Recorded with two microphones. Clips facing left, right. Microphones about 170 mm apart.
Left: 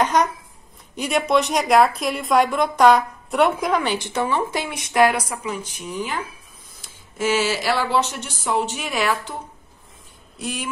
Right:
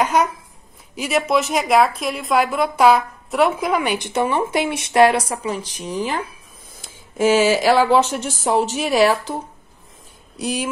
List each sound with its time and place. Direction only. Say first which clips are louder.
0.0 s a woman's voice: right 1 dB; 10° right (ahead or behind); by 6.0 s 35° right (ahead or behind)
7.6 s a woman's voice: right 6 dB; 45° right (ahead or behind)
10.4 s a woman's voice: right 6 dB; 40° right (ahead or behind)